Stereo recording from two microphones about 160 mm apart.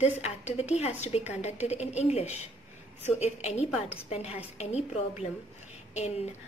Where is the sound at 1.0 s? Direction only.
45° left (ahead or behind).